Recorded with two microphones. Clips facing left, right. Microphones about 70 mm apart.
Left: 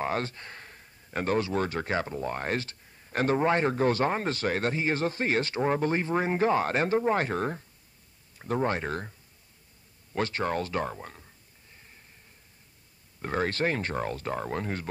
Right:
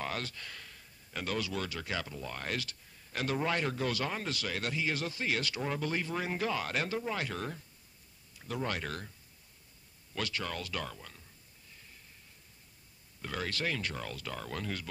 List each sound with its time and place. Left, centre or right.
0.0 s speech: left
10.1 s speech: left
13.2 s speech: left